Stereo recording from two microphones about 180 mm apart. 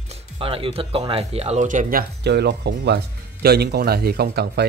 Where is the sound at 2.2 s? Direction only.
65° right (ahead or behind).